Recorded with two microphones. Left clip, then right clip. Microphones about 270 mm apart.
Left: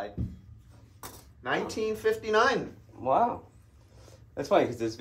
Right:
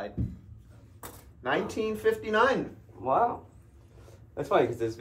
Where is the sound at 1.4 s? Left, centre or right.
Centre.